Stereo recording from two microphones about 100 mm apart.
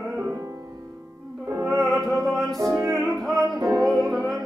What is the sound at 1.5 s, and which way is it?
Opera, 30° right (ahead or behind).